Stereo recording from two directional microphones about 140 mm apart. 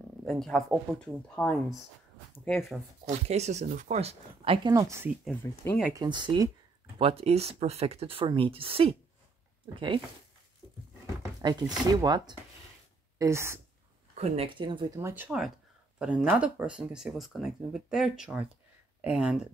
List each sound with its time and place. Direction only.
0.2 s speech: centre (ahead or behind)
3.1 s speech: 50° right (ahead or behind)
4.6 s speech: 25° right (ahead or behind)
5.3 s speech: 15° left (ahead or behind)
5.9 s speech: 35° right (ahead or behind)
7.0 s speech: 45° right (ahead or behind)
11.4 s speech: 30° right (ahead or behind)
13.2 s speech: 20° right (ahead or behind)
14.1 s speech: 50° right (ahead or behind)
15.0 s speech: 15° right (ahead or behind)